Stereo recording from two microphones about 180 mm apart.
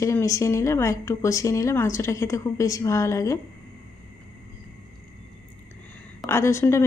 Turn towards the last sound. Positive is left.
turn(degrees=15)  # may be behind; listen again after turning